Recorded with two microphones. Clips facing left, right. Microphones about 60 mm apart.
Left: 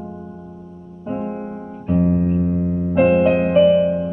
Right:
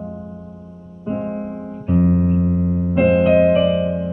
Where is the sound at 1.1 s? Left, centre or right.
Centre.